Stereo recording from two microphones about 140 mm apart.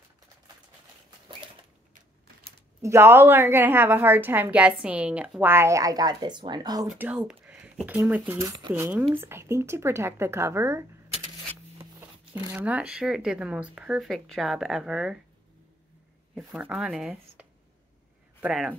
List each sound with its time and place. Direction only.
2.8 s a woman's voice: 15° right (ahead or behind)
7.0 s speech: 10° right (ahead or behind); by 8.7 s 30° right (ahead or behind)
8.7 s a woman's voice: 15° right (ahead or behind)
12.0 s speech: 15° right (ahead or behind)
16.3 s a woman's voice: 5° right (ahead or behind)